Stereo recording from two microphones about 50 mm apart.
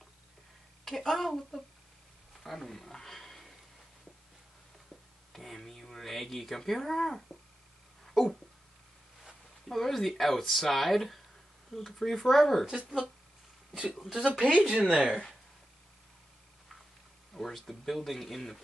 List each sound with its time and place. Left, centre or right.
0.8 s speech: centre
2.4 s a sound: centre
5.3 s speech: centre
8.1 s a sound: centre
9.7 s speech: centre
14.2 s speech: right
17.3 s speech: centre